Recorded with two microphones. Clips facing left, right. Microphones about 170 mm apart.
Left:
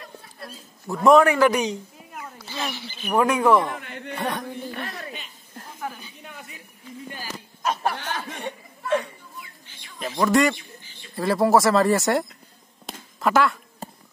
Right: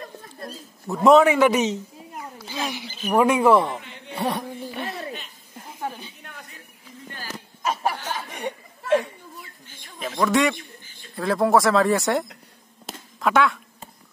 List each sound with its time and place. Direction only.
0.0 s a sound: 45° right (ahead or behind)
1.0 s speech: centre (ahead or behind)
2.2 s wild animals: 10° right (ahead or behind)
3.0 s speech: centre (ahead or behind)
3.8 s a sound: 55° left (ahead or behind)
4.1 s speech: 10° right (ahead or behind)
4.8 s speech: 25° right (ahead or behind)
5.1 s chuckle: 5° right (ahead or behind)
5.8 s a sound: 30° right (ahead or behind)
7.6 s chuckle: 10° right (ahead or behind)
9.9 s a man's voice: centre (ahead or behind)
12.8 s a sound: centre (ahead or behind)